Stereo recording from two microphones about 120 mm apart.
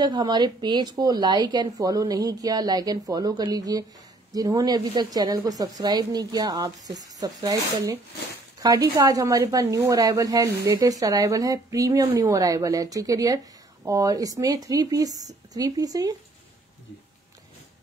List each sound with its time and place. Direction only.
0.0 s speech: 35° right (ahead or behind)